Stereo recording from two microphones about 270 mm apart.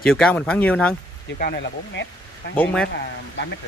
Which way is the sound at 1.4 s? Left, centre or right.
Left.